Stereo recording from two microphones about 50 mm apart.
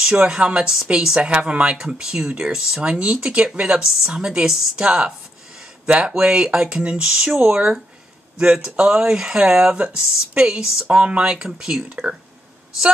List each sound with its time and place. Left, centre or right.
0.0 s speech: centre
1.3 s speech: right; by 2.8 s centre
2.8 s speech: right
7.1 s speech: centre